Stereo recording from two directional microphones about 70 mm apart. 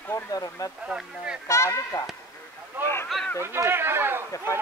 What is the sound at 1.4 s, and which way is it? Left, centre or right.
Speech, left.